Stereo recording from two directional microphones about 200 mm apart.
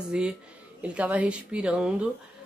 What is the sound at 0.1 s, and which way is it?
Speech, 5° right (ahead or behind).